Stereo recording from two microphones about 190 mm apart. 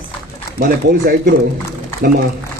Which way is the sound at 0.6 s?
50° right (ahead or behind).